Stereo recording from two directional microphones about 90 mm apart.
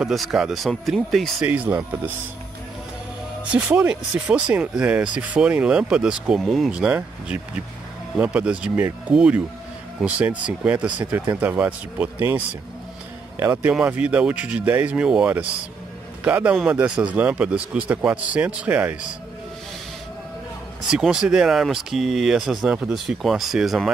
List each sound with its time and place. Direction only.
0.0 s speech: centre (ahead or behind)
1.4 s speech: 20° right (ahead or behind)
3.5 s speech: 10° right (ahead or behind)
6.4 s speech: 5° left (ahead or behind)
6.7 s speech: 10° right (ahead or behind)
13.4 s speech: 15° right (ahead or behind)
16.3 s speech: 20° right (ahead or behind)
20.9 s speech: 5° right (ahead or behind)